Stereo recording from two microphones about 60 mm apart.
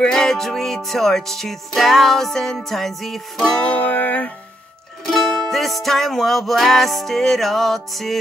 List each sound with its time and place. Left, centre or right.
0.0 s music: centre
3.6 s music: left
5.0 s music: centre